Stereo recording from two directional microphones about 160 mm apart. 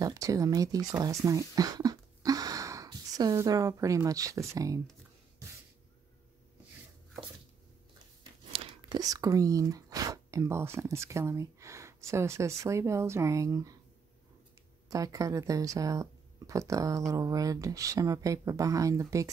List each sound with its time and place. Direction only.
0.0 s speech: 20° right (ahead or behind)
8.2 s speech: 30° right (ahead or behind)
14.9 s speech: 20° right (ahead or behind)